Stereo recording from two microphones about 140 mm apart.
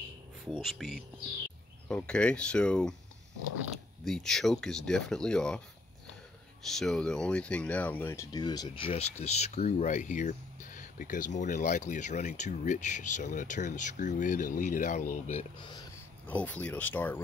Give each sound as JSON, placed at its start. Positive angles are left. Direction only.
{"t": 0.6, "sound": "speech", "side_deg": 0}
{"t": 4.0, "sound": "speech", "side_deg": 5}
{"t": 6.6, "sound": "speech", "side_deg": 5}
{"t": 8.3, "sound": "speech", "side_deg": 30}
{"t": 15.6, "sound": "speech", "side_deg": 30}
{"t": 16.3, "sound": "speech", "side_deg": 10}